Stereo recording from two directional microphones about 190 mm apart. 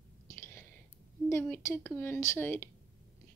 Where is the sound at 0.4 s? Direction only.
10° left (ahead or behind).